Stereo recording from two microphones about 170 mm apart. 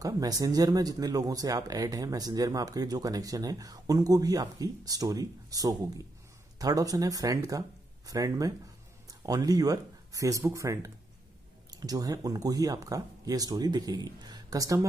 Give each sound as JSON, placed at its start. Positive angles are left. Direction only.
{"t": 0.0, "sound": "speech", "side_deg": -20}